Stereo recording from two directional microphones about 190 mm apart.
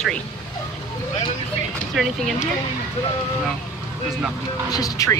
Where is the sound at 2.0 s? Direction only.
Centre (ahead or behind).